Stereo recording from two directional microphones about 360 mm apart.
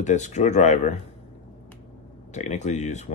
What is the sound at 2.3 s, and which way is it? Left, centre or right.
Speech, centre.